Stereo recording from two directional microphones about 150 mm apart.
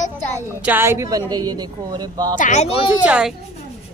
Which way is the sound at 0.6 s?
10° right (ahead or behind).